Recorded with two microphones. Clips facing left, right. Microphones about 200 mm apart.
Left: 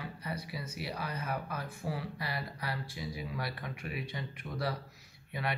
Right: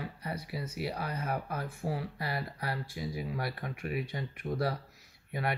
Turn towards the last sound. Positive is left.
turn(degrees=-45)  # may be behind; listen again after turning